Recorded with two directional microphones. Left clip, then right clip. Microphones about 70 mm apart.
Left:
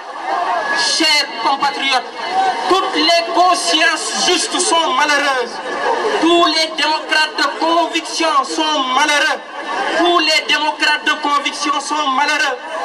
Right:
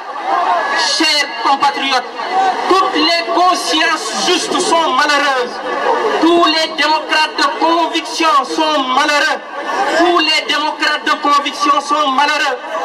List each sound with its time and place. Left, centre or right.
0.7 s music: left
2.6 s a man's voice: left